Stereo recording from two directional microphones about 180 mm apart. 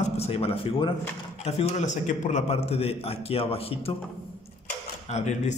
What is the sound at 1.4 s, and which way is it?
A man's voice, 40° left (ahead or behind).